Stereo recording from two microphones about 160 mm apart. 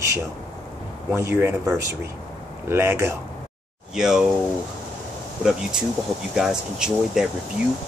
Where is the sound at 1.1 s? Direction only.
15° right (ahead or behind).